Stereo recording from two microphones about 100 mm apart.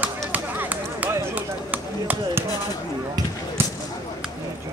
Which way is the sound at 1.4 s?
15° right (ahead or behind).